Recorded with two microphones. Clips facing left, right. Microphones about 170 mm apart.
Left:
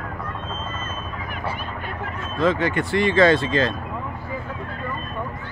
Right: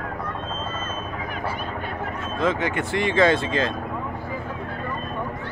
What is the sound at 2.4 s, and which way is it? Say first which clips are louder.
Speech: left 3 dB; 20° right (ahead or behind).